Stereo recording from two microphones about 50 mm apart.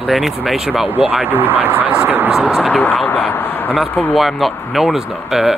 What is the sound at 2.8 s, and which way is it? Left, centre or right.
Speech, left.